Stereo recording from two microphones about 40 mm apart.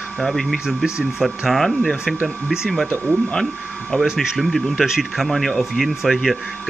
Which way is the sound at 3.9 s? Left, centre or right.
Centre.